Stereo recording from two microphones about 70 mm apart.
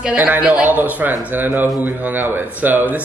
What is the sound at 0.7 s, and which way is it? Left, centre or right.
A man's voice, right.